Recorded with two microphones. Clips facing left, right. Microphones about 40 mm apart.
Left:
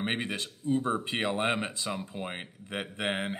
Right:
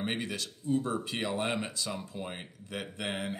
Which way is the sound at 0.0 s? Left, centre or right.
Left.